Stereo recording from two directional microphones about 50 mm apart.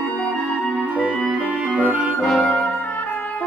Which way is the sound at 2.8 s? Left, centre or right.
Left.